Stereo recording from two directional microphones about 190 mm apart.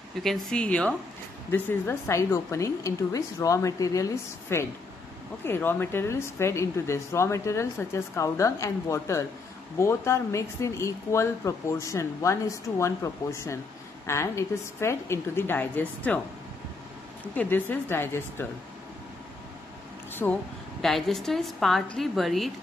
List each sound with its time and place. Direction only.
0.2 s a woman's voice: 5° left (ahead or behind)
17.2 s speech: 10° left (ahead or behind)
20.2 s a woman's voice: 10° left (ahead or behind)